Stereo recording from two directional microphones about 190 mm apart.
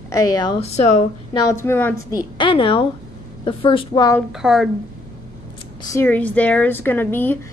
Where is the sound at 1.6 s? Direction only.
10° left (ahead or behind).